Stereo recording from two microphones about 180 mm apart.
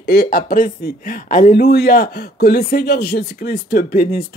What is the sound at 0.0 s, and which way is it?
Speech, 60° left (ahead or behind).